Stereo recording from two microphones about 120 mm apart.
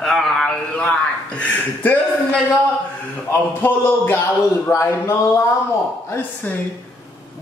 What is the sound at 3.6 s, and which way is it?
A man's voice, 15° left (ahead or behind).